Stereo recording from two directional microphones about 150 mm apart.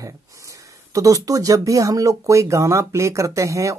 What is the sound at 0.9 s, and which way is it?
Speech, 25° right (ahead or behind).